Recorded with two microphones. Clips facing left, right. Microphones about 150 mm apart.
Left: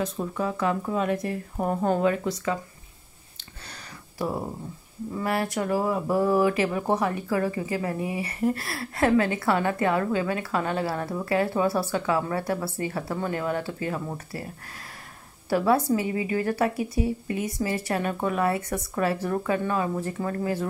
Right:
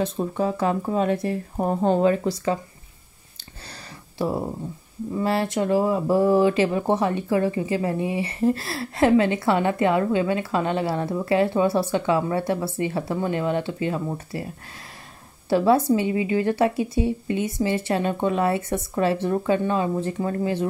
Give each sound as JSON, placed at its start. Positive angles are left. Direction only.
{"t": 0.0, "sound": "speech", "side_deg": -30}
{"t": 5.2, "sound": "speech", "side_deg": -30}
{"t": 15.5, "sound": "speech", "side_deg": -25}